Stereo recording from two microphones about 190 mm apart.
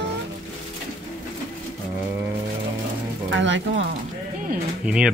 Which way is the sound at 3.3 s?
70° right (ahead or behind).